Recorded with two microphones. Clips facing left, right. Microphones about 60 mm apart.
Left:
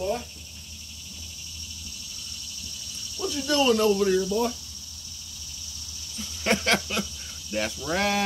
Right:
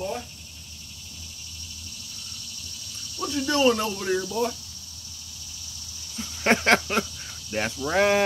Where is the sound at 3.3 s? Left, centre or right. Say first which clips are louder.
Right 1 dB; right.